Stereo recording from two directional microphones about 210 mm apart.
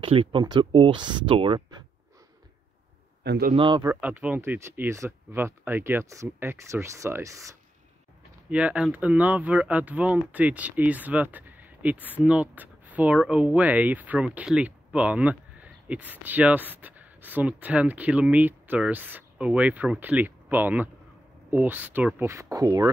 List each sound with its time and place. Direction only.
0.0 s speech: 25° right (ahead or behind)
3.3 s a man's voice: 45° right (ahead or behind)
3.5 s speech: 25° right (ahead or behind)
3.8 s speech: 10° right (ahead or behind)